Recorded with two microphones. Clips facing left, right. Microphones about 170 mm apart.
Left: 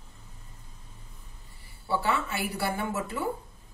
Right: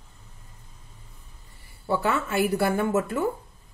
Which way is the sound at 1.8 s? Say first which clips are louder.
Right 3 dB; 50° right (ahead or behind).